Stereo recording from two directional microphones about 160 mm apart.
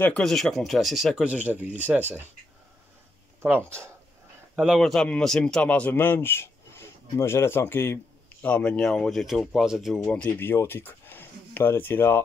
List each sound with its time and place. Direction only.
0.0 s speech: 5° left (ahead or behind); by 2.2 s 10° right (ahead or behind)
3.4 s speech: 15° right (ahead or behind)
4.6 s a man's voice: centre (ahead or behind); by 12.2 s 15° left (ahead or behind)